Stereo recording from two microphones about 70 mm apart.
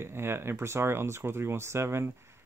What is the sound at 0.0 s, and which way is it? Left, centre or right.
Speech, right.